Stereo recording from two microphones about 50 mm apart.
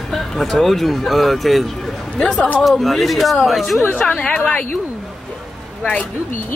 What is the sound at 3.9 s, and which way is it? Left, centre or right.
Speech, left.